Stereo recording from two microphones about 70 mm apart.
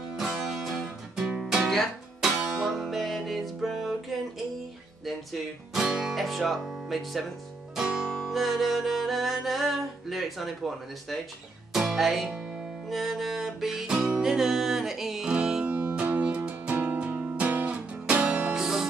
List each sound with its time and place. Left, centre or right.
0.2 s music: centre
5.7 s guitar: centre
7.7 s music: centre